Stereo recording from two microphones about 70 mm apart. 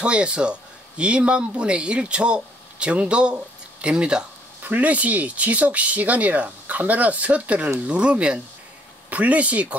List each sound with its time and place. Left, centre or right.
0.0 s speech: centre